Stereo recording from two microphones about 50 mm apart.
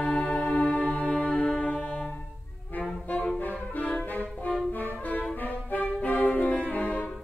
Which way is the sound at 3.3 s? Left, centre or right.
Left.